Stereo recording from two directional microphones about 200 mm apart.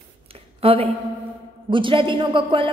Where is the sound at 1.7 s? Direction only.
25° right (ahead or behind).